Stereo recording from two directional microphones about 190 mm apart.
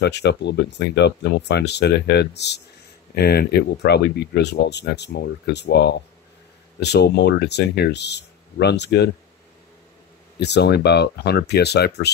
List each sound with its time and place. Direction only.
0.0 s speech: 60° left (ahead or behind)
10.4 s speech: 60° left (ahead or behind)